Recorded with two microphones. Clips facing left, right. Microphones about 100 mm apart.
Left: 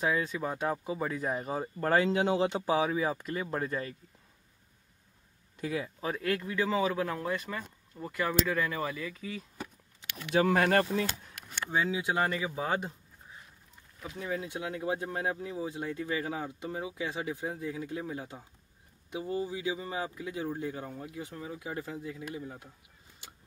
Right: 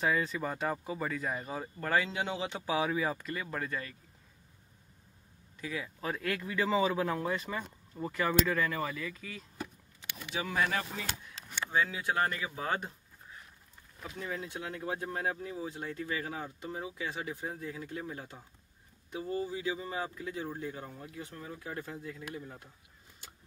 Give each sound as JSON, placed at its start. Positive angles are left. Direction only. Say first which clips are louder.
{"t": 0.0, "sound": "speech", "louder": "left 1 dB", "side_deg": 5}
{"t": 1.5, "sound": "speech", "louder": "left 4 dB", "side_deg": 30}
{"t": 2.7, "sound": "speech", "louder": "right 1 dB", "side_deg": 5}
{"t": 3.4, "sound": "speech", "louder": "left 6 dB", "side_deg": 25}
{"t": 5.6, "sound": "speech", "louder": "left 5 dB", "side_deg": 45}
{"t": 5.9, "sound": "speech", "louder": "left 3 dB", "side_deg": 5}
{"t": 8.3, "sound": "speech", "louder": "even", "side_deg": 5}
{"t": 10.0, "sound": "speech", "louder": "left 11 dB", "side_deg": 65}
{"t": 11.7, "sound": "speech", "louder": "left 2 dB", "side_deg": 15}